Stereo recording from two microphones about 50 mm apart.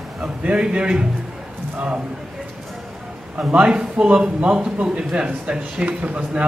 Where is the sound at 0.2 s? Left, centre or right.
Right.